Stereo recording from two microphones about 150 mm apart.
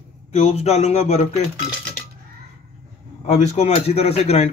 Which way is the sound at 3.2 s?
50° left (ahead or behind).